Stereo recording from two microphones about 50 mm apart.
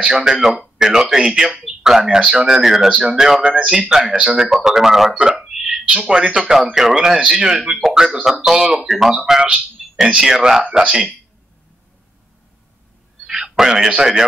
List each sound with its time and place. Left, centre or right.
0.0 s speech: centre
3.4 s speech: right
4.1 s speech: centre
9.8 s a sound: centre
10.2 s speech: centre
10.6 s speech: centre
13.3 s speech: centre